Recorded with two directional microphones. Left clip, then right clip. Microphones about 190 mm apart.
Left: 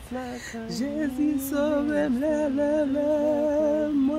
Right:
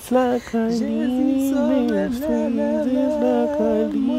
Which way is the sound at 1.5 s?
5° left (ahead or behind).